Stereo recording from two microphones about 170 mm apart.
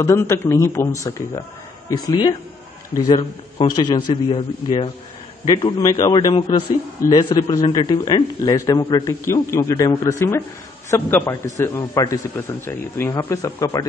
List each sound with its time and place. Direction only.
0.0 s a man's voice: 20° left (ahead or behind)